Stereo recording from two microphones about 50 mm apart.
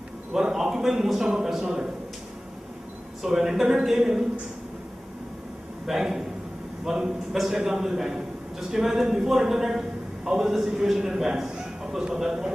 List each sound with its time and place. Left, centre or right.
0.3 s a man's voice: centre
3.3 s a man's voice: centre
5.9 s a man's voice: centre